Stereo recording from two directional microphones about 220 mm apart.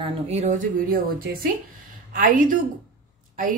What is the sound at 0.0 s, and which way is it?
Speech, 30° right (ahead or behind).